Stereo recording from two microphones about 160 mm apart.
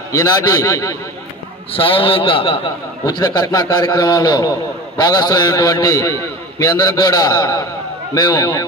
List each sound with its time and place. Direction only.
0.1 s a man's voice: 25° left (ahead or behind)
1.7 s a man's voice: 35° left (ahead or behind)